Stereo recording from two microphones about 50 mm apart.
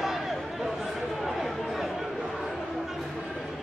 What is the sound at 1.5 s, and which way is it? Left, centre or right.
Chatter, centre.